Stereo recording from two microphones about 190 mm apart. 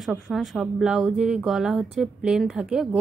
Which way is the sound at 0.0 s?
Centre (ahead or behind).